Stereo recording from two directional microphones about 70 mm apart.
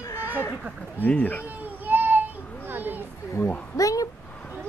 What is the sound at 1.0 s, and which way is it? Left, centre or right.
Speech, left.